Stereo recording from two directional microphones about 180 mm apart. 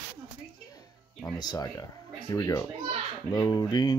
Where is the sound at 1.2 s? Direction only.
20° left (ahead or behind).